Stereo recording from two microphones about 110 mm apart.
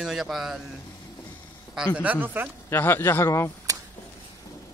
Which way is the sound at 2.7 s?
20° left (ahead or behind).